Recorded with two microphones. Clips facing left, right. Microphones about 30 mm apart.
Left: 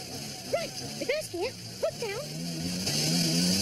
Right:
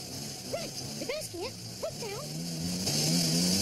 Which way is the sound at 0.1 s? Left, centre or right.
Left.